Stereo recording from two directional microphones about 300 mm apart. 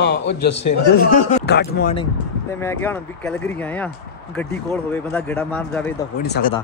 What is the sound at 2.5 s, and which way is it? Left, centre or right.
Speech, centre.